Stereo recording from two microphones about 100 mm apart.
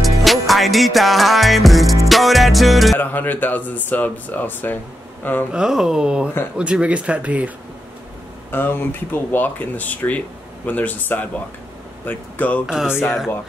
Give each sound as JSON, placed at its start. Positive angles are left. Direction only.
{"t": 0.0, "sound": "music", "side_deg": 0}
{"t": 3.0, "sound": "speech", "side_deg": 20}
{"t": 5.5, "sound": "speech", "side_deg": -5}
{"t": 8.5, "sound": "speech", "side_deg": 20}
{"t": 12.6, "sound": "speech", "side_deg": -10}